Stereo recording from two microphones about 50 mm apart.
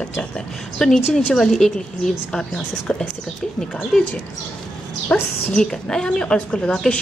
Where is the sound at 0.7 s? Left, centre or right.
Centre.